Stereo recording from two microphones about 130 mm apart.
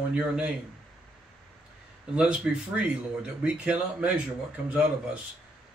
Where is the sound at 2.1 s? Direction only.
5° right (ahead or behind).